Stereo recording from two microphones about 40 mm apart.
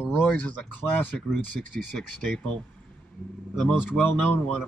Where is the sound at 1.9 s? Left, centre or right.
Left.